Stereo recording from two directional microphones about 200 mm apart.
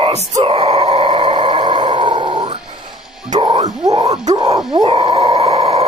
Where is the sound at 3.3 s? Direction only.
25° right (ahead or behind).